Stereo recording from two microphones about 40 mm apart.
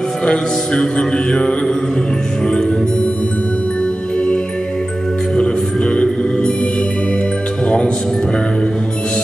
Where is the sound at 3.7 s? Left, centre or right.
Left.